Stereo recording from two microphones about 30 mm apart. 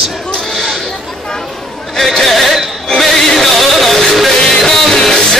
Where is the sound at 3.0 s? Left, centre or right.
Centre.